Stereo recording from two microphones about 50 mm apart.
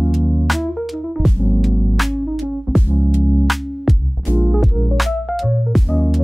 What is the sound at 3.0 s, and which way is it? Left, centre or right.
Music, right.